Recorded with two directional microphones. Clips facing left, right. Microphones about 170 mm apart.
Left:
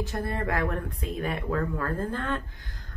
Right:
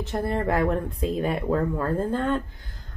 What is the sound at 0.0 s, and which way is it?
Speech, 25° right (ahead or behind).